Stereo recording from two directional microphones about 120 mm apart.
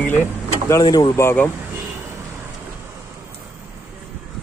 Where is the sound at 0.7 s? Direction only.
30° left (ahead or behind).